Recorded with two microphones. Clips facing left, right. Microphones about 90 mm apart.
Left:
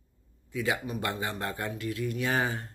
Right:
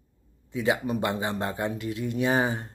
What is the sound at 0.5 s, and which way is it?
Speech, 25° right (ahead or behind).